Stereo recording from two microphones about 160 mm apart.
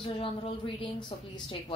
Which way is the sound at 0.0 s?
35° left (ahead or behind).